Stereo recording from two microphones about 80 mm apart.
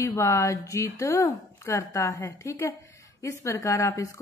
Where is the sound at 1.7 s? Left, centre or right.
Left.